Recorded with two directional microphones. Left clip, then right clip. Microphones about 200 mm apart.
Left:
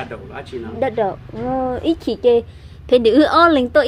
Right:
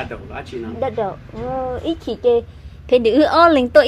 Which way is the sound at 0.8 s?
15° left (ahead or behind).